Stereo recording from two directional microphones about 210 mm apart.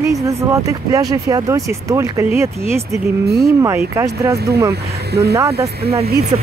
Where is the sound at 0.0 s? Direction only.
15° right (ahead or behind).